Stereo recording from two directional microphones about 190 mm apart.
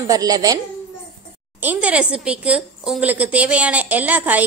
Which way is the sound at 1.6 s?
10° right (ahead or behind).